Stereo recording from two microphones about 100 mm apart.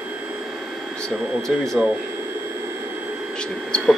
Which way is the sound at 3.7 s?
10° left (ahead or behind).